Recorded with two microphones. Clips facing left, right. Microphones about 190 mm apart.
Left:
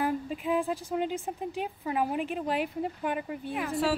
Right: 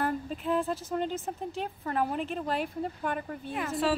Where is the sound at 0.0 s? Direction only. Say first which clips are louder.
Left 1 dB; 10° left (ahead or behind).